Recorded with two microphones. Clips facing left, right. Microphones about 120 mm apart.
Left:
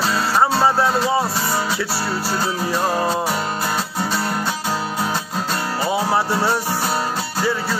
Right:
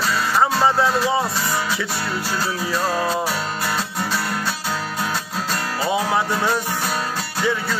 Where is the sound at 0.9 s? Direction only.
25° left (ahead or behind).